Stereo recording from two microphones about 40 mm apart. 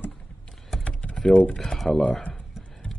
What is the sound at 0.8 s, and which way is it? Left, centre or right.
Typing, left.